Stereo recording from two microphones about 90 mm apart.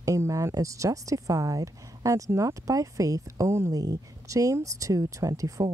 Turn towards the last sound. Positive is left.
turn(degrees=-40)  # may be behind; listen again after turning